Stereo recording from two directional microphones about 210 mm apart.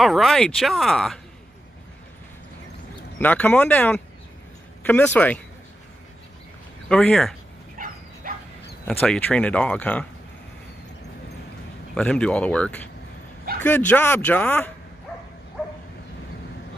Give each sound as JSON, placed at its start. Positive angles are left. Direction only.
{"t": 0.0, "sound": "speech", "side_deg": 0}
{"t": 3.2, "sound": "speech", "side_deg": 10}
{"t": 6.9, "sound": "speech", "side_deg": 5}
{"t": 7.7, "sound": "bow-wow", "side_deg": -40}
{"t": 9.0, "sound": "speech", "side_deg": 5}
{"t": 11.9, "sound": "speech", "side_deg": 5}